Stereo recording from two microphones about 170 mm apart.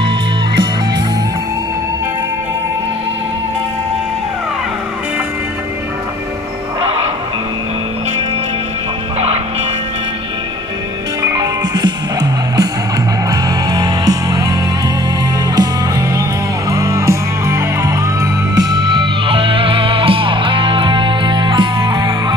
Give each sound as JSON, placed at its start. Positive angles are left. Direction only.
{"t": 6.8, "sound": "music", "side_deg": -35}
{"t": 11.2, "sound": "music", "side_deg": -25}
{"t": 18.9, "sound": "music", "side_deg": -30}